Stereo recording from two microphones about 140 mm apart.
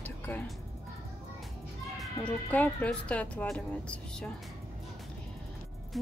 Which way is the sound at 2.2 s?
20° left (ahead or behind).